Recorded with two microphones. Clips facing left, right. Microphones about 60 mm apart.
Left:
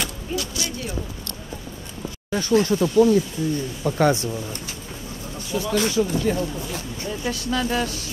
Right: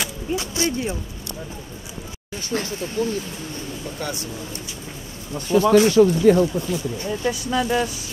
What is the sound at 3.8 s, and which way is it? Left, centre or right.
Speech, left.